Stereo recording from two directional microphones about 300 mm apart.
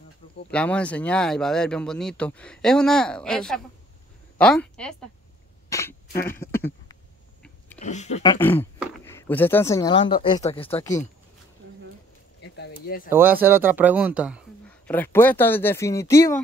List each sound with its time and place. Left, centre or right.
0.5 s a man's voice: centre
5.7 s throat clearing: centre
6.2 s a sound: centre
7.8 s speech: left
12.4 s a sound: left
13.1 s a man's voice: centre